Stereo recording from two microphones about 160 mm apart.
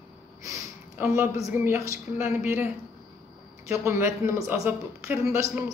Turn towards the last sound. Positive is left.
turn(degrees=-20)  # may be behind; listen again after turning